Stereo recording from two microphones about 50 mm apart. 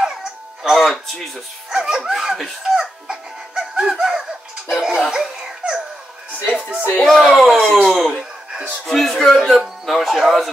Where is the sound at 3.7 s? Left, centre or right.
Centre.